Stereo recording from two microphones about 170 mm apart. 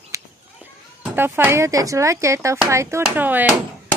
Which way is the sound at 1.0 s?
10° right (ahead or behind).